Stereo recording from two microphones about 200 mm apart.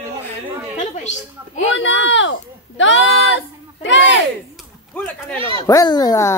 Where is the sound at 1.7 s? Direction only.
65° left (ahead or behind).